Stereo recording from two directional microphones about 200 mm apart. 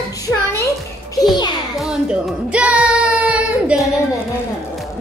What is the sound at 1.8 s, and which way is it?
Child singing, 5° right (ahead or behind).